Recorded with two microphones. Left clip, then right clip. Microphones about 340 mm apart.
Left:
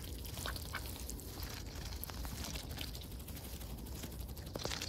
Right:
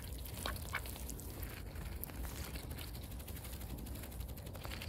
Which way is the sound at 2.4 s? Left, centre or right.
Left.